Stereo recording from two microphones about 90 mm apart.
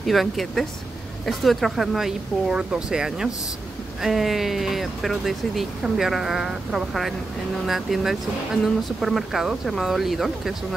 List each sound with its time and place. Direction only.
0.0 s speech: centre (ahead or behind)